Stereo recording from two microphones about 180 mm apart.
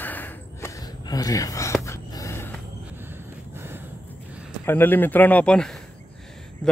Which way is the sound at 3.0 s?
10° right (ahead or behind).